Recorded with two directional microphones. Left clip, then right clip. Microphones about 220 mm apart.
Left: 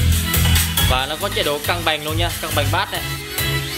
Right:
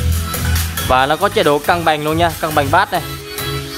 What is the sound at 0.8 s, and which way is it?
Speech, 35° right (ahead or behind).